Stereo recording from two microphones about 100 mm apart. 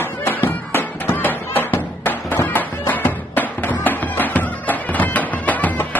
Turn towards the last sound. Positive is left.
turn(degrees=15)  # may be behind; listen again after turning